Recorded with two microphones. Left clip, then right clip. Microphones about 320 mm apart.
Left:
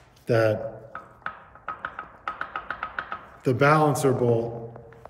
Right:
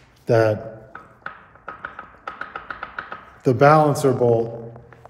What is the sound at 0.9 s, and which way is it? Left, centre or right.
Music, centre.